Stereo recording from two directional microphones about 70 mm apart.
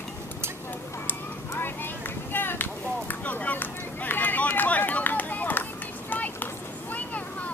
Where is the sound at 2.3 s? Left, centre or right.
Left.